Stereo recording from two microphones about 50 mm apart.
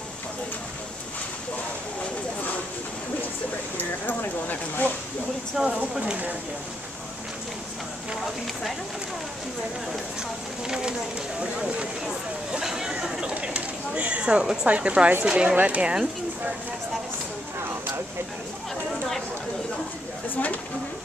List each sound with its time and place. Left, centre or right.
3.7 s speech: left
5.6 s speech: centre
10.7 s speech: centre
12.5 s a sound: centre
13.2 s a sound: right
14.7 s speech: right